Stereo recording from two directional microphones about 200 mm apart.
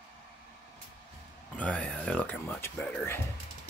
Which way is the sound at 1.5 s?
5° left (ahead or behind).